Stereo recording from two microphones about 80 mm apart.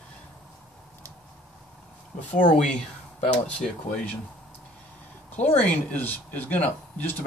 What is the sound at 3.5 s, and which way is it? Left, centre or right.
Speech, centre.